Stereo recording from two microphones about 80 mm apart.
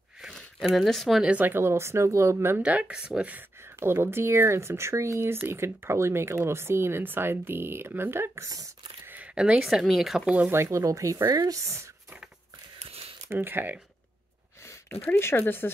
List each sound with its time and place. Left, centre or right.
0.3 s a sound: centre
0.7 s speech: centre
1.2 s speech: right
2.6 s speech: centre
3.6 s speech: right
8.5 s beatboxing: right
9.0 s speech: right; by 10.3 s centre
10.5 s speech: right
13.3 s speech: right
14.6 s speech: left